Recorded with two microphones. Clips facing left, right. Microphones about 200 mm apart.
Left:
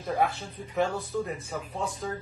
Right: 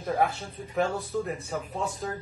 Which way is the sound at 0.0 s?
Centre (ahead or behind).